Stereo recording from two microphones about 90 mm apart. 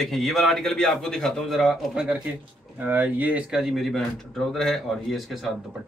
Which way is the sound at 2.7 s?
20° right (ahead or behind).